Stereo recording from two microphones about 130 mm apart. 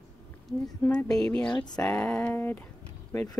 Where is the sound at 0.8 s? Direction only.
5° left (ahead or behind).